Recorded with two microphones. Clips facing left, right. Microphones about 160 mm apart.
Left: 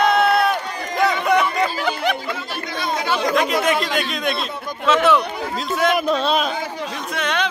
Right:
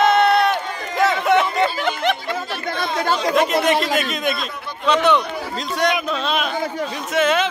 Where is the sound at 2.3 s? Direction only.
50° right (ahead or behind).